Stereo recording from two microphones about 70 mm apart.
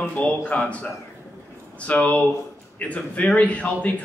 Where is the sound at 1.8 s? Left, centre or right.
Centre.